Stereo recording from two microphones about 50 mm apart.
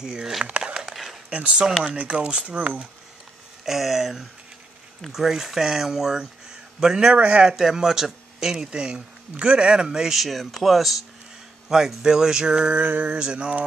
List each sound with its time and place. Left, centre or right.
0.0 s speech: centre
0.5 s a sound: right
0.7 s a sound: centre
1.3 s speech: right
3.6 s speech: centre
7.2 s speech: right
7.4 s speech: centre
10.2 s speech: centre
12.7 s speech: right